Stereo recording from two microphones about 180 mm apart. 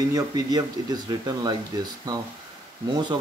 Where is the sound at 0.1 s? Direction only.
20° right (ahead or behind).